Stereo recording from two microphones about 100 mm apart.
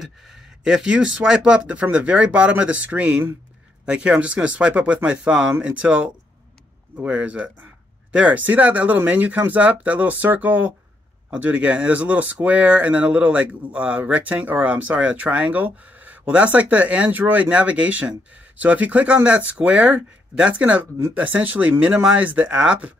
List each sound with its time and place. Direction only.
0.0 s speech: 5° right (ahead or behind)